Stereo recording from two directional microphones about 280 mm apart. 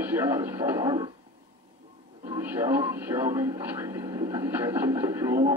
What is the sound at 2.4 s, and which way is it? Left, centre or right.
Speech, centre.